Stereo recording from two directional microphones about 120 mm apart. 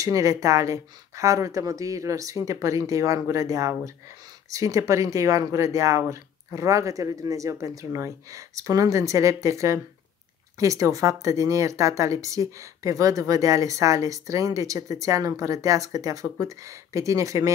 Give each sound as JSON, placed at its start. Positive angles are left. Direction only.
{"t": 0.0, "sound": "speech", "side_deg": -25}